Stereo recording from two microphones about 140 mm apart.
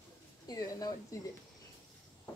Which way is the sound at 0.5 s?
25° left (ahead or behind).